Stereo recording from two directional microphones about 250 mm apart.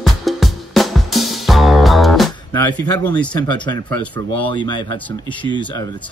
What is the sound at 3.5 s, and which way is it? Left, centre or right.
Speech, centre.